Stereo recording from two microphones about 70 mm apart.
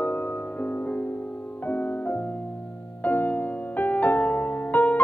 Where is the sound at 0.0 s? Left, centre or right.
Left.